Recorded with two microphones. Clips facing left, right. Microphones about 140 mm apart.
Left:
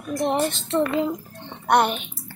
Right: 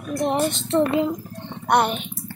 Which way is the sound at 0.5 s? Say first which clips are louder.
Right 3 dB; 15° right (ahead or behind).